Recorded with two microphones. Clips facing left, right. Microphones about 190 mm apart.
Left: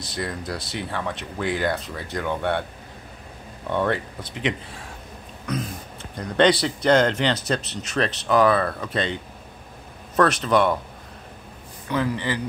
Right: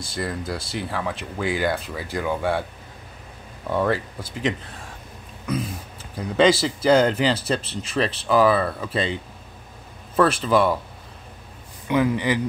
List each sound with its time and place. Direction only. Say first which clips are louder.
0.1 s speech: right 1 dB; centre (ahead or behind)
3.7 s speech: right 1 dB; 5° right (ahead or behind)
6.1 s speech: right 1 dB; 5° right (ahead or behind)
11.9 s speech: right 4 dB; 15° right (ahead or behind)